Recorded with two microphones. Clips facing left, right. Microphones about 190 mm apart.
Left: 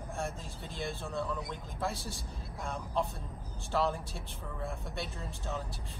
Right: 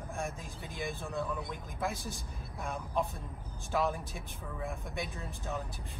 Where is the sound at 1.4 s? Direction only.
Centre (ahead or behind).